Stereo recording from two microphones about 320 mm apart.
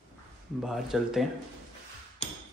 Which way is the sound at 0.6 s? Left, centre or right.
Centre.